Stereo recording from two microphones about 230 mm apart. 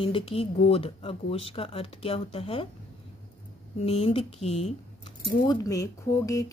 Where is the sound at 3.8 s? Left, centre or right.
Left.